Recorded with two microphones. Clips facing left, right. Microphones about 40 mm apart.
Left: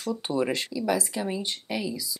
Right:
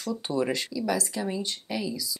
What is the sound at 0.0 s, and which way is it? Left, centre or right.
Speech, centre.